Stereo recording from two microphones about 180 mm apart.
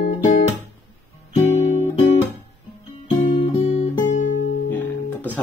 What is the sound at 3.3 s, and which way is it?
Guitar, 30° left (ahead or behind).